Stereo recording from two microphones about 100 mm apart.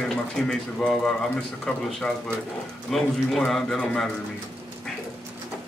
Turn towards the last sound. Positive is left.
turn(degrees=5)  # may be behind; listen again after turning